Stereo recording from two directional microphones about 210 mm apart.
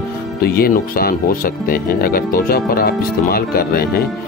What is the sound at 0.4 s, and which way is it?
Speech, 45° left (ahead or behind).